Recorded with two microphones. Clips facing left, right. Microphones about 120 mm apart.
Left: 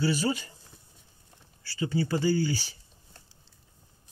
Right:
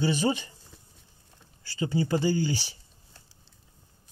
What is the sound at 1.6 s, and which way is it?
Speech, 20° right (ahead or behind).